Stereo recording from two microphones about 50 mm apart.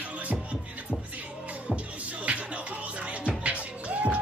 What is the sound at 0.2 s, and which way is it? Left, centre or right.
Music, right.